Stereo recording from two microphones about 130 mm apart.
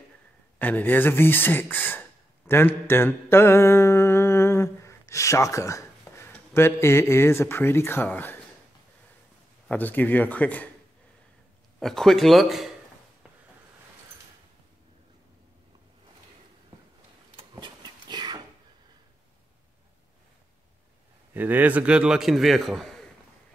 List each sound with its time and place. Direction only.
0.6 s speech: 10° left (ahead or behind)
9.7 s speech: 15° left (ahead or behind)
11.8 s a man's voice: 5° left (ahead or behind)
17.4 s dog: 35° right (ahead or behind)
21.3 s a man's voice: 15° right (ahead or behind); by 23.0 s centre (ahead or behind)